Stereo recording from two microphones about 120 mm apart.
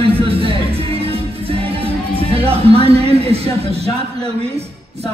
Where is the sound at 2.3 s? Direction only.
55° right (ahead or behind).